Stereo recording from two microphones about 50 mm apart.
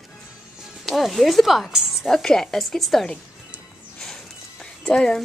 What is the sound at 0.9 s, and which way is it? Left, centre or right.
Speech, centre.